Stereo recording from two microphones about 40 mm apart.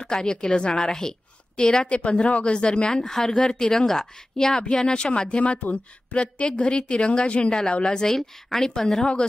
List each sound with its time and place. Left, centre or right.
0.0 s a woman's voice: centre
1.9 s a woman's voice: left
4.8 s a woman's voice: left
7.8 s speech: centre